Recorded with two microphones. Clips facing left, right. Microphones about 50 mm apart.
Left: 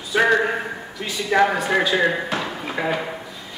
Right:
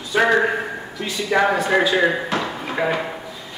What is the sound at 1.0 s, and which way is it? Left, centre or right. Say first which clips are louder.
Speech: even; centre.